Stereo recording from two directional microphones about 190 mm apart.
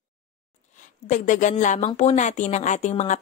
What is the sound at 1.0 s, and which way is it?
A woman's voice, 40° left (ahead or behind).